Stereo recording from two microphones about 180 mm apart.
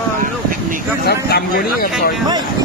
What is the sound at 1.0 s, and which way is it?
Speech, 60° left (ahead or behind).